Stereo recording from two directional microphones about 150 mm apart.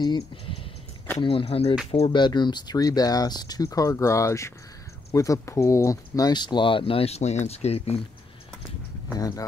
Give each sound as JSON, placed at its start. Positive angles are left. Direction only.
{"t": 0.0, "sound": "speech", "side_deg": 30}